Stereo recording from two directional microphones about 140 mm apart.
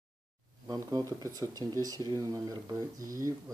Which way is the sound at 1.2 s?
25° right (ahead or behind).